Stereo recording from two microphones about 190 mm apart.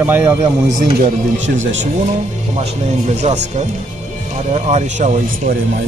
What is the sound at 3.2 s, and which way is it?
Speech, 35° right (ahead or behind).